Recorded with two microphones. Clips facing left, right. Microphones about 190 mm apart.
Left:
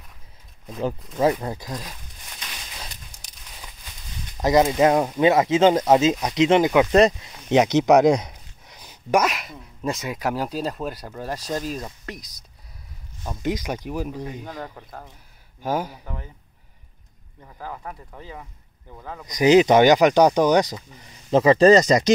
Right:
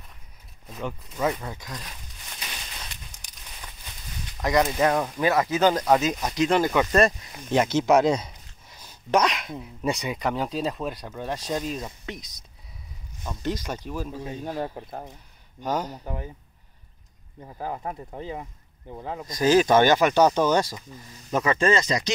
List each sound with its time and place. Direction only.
0.7 s speech: 35° left (ahead or behind)
4.4 s speech: 25° left (ahead or behind)
7.6 s a sound: 15° left (ahead or behind)
9.6 s speech: centre (ahead or behind)
13.2 s speech: 15° left (ahead or behind)
14.6 s speech: 25° right (ahead or behind)
15.6 s speech: 10° left (ahead or behind)
16.0 s speech: 15° right (ahead or behind)
17.4 s speech: 25° right (ahead or behind)
19.2 s speech: 15° left (ahead or behind)
21.3 s speech: 30° left (ahead or behind)